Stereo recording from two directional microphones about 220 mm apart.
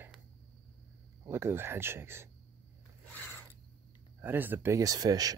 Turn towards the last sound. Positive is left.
turn(degrees=-15)  # may be behind; listen again after turning